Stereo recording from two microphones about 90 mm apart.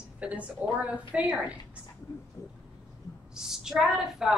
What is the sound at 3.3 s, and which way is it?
A woman's voice, 5° right (ahead or behind).